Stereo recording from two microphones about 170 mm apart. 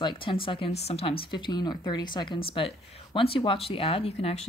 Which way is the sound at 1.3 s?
25° left (ahead or behind).